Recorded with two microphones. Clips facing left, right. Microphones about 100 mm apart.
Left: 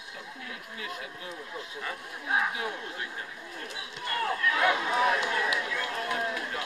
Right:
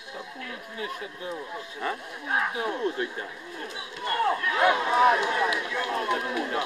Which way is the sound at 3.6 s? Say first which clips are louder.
Right 6 dB; 30° right (ahead or behind).